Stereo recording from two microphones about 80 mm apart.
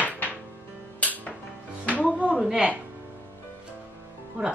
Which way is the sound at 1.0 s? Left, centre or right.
Centre.